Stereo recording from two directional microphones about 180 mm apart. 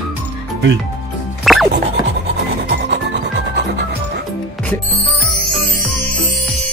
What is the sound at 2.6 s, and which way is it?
Music, 70° right (ahead or behind).